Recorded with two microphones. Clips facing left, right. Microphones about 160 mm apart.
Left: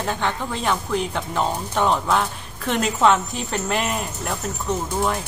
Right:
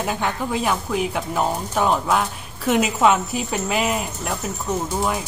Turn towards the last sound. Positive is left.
turn(degrees=-5)  # may be behind; listen again after turning